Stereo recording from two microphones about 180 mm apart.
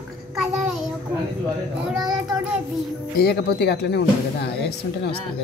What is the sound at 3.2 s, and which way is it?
Speech, 65° left (ahead or behind).